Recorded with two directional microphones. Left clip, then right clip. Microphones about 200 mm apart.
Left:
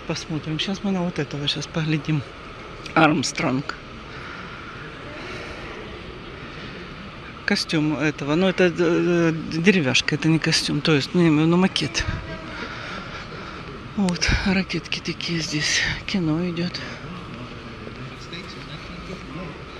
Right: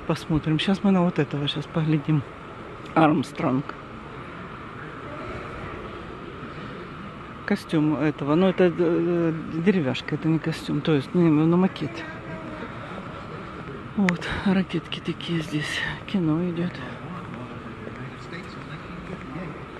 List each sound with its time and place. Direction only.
0.1 s speech: 20° right (ahead or behind); by 3.5 s 5° left (ahead or behind)
7.4 s speech: centre (ahead or behind)
8.7 s a man's voice: 10° left (ahead or behind)
14.2 s speech: centre (ahead or behind)